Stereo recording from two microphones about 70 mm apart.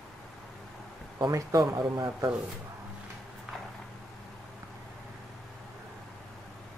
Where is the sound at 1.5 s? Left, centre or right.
Right.